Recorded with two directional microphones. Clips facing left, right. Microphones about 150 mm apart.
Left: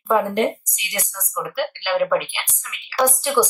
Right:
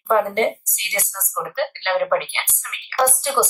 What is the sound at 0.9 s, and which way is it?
Speech, 5° left (ahead or behind).